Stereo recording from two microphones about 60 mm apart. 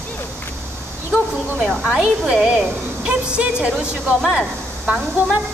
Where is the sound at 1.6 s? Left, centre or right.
Centre.